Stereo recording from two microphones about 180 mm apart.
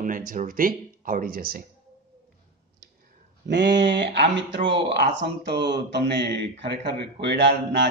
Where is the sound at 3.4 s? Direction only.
75° right (ahead or behind).